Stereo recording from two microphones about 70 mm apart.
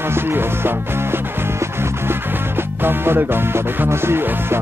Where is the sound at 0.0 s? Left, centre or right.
Right.